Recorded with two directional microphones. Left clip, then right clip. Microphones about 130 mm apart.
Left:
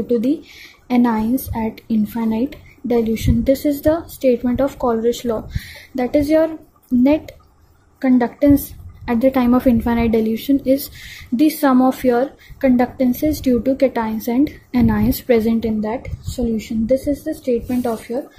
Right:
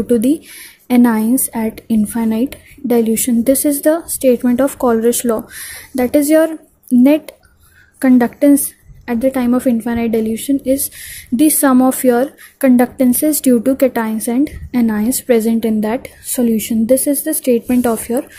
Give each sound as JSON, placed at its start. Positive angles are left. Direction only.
{"t": 0.0, "sound": "a woman's voice", "side_deg": -40}
{"t": 2.5, "sound": "a woman's voice", "side_deg": -35}
{"t": 15.8, "sound": "a woman's voice", "side_deg": -45}